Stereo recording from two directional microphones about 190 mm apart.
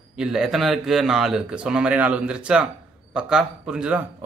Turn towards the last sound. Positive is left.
turn(degrees=-5)  # may be behind; listen again after turning